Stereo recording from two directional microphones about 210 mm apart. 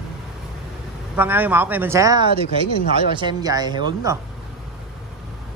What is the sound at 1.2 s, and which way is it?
Speech, 10° right (ahead or behind).